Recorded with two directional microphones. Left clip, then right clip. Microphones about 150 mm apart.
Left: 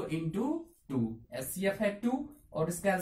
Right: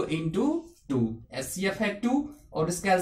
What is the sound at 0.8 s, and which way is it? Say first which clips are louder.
Speech: right 7 dB; 20° left (ahead or behind).